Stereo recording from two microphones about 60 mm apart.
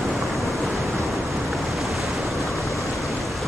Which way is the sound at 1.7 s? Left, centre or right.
Centre.